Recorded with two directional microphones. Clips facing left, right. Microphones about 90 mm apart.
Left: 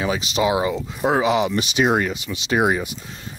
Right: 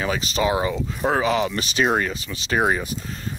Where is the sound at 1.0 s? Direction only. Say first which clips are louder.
Left 2 dB; 90° left.